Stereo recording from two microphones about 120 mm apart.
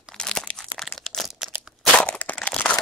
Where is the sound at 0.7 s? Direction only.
Centre (ahead or behind).